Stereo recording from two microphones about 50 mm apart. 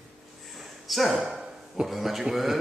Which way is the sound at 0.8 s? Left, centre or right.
Centre.